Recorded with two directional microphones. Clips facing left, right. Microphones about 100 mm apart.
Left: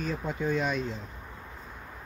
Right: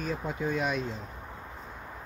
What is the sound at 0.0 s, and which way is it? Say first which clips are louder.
Speech: left 1 dB; 5° right (ahead or behind).